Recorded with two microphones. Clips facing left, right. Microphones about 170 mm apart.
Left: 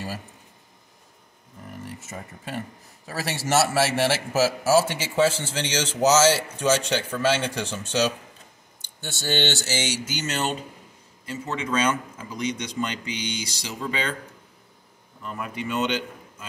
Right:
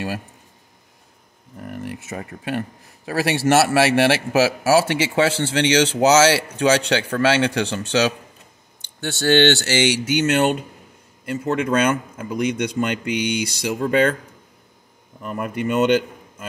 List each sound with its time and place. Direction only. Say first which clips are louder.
1.7 s a man's voice: right 7 dB; 70° right (ahead or behind)
15.2 s a man's voice: right 7 dB; 55° right (ahead or behind)